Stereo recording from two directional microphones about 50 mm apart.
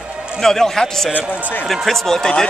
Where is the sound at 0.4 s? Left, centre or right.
Centre.